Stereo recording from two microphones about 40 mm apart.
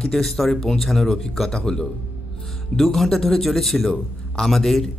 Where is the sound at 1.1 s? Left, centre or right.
Centre.